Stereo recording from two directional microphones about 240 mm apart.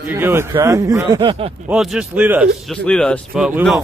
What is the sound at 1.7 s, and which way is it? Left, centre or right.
Speech, centre.